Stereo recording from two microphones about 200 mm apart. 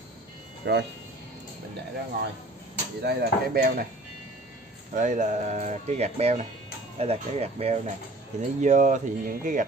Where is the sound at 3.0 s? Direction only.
50° right (ahead or behind).